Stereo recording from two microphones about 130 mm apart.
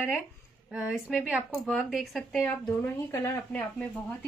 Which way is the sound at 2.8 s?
15° left (ahead or behind).